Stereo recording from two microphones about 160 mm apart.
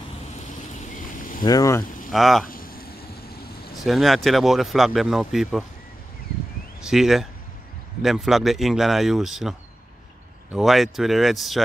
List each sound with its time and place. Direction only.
1.4 s speech: 20° left (ahead or behind)
2.0 s speech: centre (ahead or behind)
2.4 s a sound: 65° left (ahead or behind)
3.8 s speech: centre (ahead or behind)
6.8 s speech: 5° right (ahead or behind)